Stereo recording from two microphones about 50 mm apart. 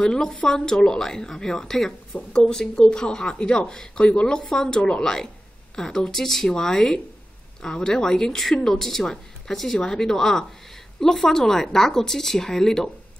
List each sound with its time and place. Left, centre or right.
0.0 s speech: centre